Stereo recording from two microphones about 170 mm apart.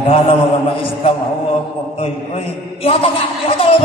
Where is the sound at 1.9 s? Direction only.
35° left (ahead or behind).